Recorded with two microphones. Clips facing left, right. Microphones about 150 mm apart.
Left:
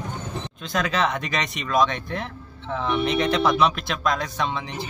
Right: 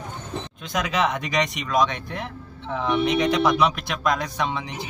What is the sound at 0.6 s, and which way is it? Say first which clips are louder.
Speech: even; 15° right (ahead or behind).